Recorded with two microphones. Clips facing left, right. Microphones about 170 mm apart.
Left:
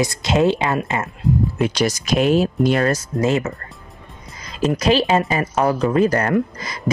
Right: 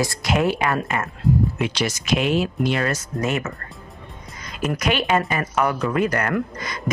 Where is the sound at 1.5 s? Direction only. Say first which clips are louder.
Left 5 dB; 40° left (ahead or behind).